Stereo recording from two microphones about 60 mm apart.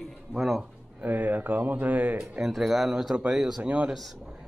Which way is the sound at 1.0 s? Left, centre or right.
Right.